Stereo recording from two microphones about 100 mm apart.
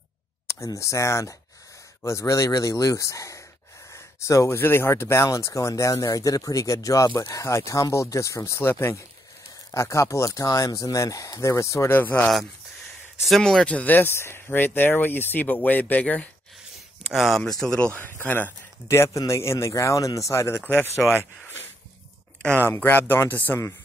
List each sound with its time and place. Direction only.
0.7 s speech: 30° left (ahead or behind)
13.2 s speech: 5° left (ahead or behind)
17.0 s speech: centre (ahead or behind); by 18.5 s 15° left (ahead or behind)
18.9 s speech: 30° left (ahead or behind)
22.7 s speech: 20° left (ahead or behind)